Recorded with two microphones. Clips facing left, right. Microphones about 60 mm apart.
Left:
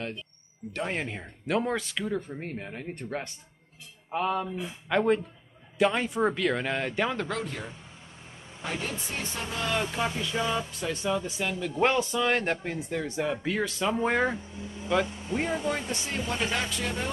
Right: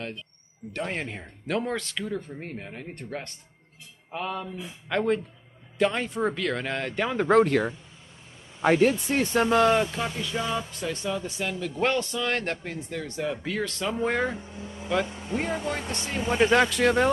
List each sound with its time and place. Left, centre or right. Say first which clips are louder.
0.7 s speech: even; centre
7.4 s speech: right 13 dB; right
8.6 s speech: right 13 dB; right
9.8 s speech: left 1 dB; centre
16.2 s speech: right 9 dB; right
16.5 s speech: right 10 dB; right